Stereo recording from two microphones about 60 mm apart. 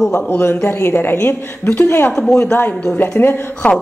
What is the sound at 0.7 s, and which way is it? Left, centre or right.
A woman's voice, left.